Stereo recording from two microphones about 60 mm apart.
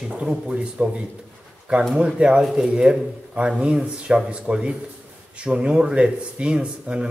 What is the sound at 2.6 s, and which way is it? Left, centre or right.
Speech, centre.